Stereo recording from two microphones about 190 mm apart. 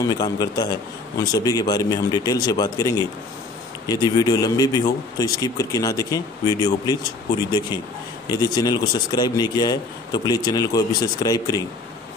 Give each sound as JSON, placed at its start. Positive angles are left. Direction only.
{"t": 0.0, "sound": "a man's voice", "side_deg": 20}
{"t": 8.3, "sound": "a man's voice", "side_deg": 20}